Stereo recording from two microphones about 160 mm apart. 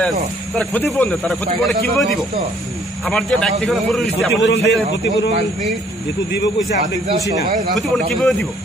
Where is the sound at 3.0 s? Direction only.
5° left (ahead or behind).